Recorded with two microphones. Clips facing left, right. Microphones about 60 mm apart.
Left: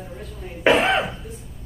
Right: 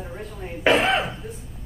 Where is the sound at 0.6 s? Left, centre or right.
Centre.